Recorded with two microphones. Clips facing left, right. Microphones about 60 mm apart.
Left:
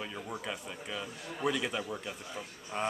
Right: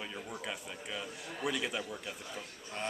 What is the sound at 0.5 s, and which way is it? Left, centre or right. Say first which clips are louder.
A man's voice: left 2 dB; centre.